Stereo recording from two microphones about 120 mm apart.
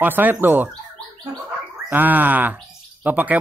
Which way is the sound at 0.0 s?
15° right (ahead or behind).